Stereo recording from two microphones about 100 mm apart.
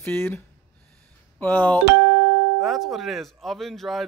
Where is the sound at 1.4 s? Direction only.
15° left (ahead or behind).